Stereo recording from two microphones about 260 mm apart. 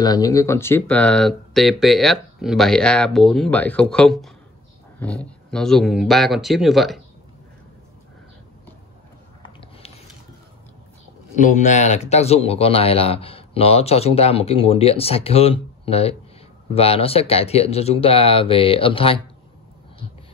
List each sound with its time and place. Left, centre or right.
0.0 s speech: centre
9.4 s a sound: left
11.3 s speech: left